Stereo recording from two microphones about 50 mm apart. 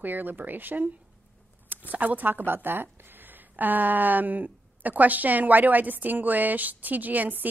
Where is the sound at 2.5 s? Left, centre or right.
Right.